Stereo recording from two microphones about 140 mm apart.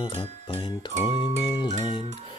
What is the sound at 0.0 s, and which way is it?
Music, 40° left (ahead or behind).